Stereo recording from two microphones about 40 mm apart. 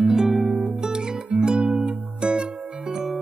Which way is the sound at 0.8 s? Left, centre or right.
Centre.